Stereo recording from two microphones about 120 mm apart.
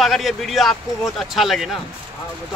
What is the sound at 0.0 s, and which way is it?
Speech, centre (ahead or behind).